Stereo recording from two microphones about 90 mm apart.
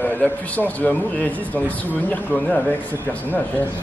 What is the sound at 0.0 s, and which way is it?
A man's voice, 20° left (ahead or behind).